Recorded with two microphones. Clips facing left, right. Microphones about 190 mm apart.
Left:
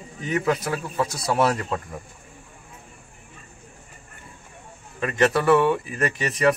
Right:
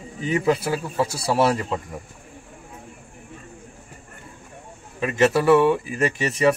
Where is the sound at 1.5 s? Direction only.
5° right (ahead or behind).